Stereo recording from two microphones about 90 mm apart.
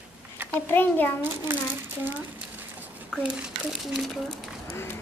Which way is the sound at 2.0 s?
20° right (ahead or behind).